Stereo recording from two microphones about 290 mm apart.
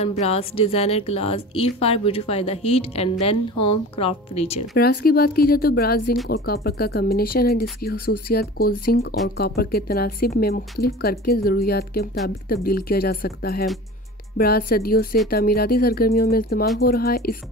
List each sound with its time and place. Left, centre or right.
0.0 s a woman's voice: left
4.7 s speech: left